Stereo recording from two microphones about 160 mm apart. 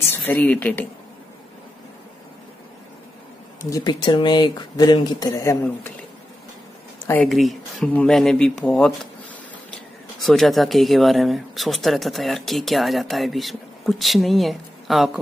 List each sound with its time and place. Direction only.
0.1 s speech: 10° left (ahead or behind)
3.7 s speech: 25° left (ahead or behind)
7.2 s speech: centre (ahead or behind)